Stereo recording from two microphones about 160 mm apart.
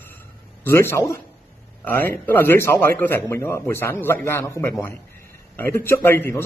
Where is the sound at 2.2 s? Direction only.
15° left (ahead or behind).